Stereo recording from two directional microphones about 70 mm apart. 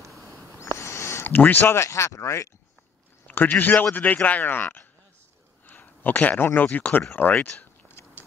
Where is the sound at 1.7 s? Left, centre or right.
Left.